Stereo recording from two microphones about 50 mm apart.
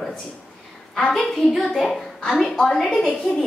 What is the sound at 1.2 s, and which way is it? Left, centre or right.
A woman's voice, centre.